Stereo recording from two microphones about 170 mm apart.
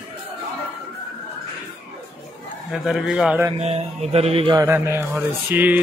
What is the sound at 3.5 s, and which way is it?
Music, 40° right (ahead or behind).